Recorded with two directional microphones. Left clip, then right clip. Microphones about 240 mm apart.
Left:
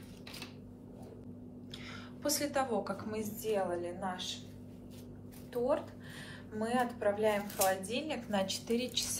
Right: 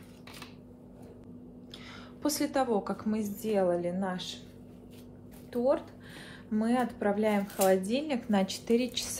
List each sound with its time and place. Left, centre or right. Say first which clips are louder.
1.9 s a woman's voice: right 3 dB; right
5.5 s speech: right 4 dB; right